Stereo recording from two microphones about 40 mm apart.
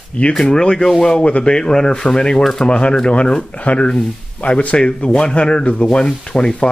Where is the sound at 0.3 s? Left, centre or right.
Centre; by 4.8 s left.